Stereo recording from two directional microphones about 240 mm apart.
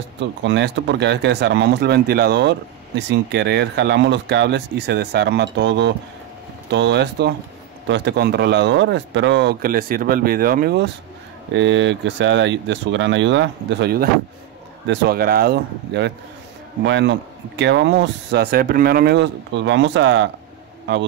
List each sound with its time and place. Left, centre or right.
0.2 s a man's voice: right